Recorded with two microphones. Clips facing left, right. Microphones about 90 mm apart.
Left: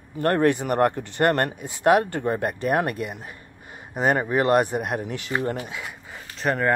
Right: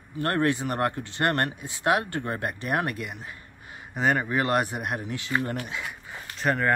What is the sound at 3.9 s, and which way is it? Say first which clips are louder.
Speech: left 3 dB; 15° left (ahead or behind).